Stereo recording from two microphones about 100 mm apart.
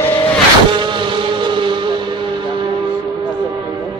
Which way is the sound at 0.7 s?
55° right (ahead or behind).